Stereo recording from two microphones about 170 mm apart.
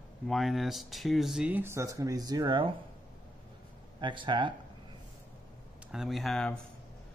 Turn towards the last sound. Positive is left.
turn(degrees=5)  # may be behind; listen again after turning